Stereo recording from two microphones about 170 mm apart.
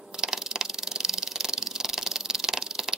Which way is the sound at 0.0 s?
5° right (ahead or behind).